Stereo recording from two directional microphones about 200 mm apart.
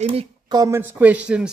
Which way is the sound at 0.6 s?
15° right (ahead or behind).